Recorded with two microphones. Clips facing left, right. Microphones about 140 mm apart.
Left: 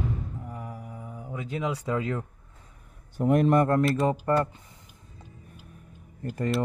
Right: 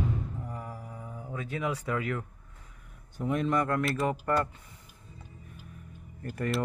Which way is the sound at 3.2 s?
50° left (ahead or behind).